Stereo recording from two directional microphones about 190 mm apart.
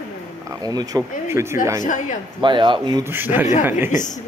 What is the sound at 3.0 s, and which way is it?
Speech, 10° right (ahead or behind).